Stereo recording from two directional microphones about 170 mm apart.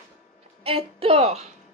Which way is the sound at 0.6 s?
35° right (ahead or behind).